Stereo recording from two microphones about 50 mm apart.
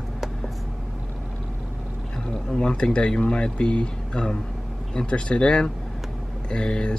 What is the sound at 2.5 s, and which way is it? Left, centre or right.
Speech, centre.